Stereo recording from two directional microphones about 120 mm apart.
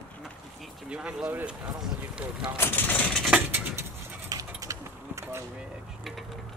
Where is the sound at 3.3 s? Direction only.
15° right (ahead or behind).